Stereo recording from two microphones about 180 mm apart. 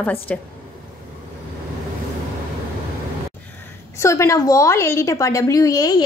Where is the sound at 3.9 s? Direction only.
15° left (ahead or behind).